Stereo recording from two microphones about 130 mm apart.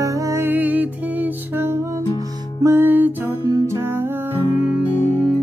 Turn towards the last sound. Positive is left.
turn(degrees=-10)  # may be behind; listen again after turning